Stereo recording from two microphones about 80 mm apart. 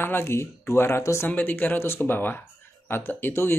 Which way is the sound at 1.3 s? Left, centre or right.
Left.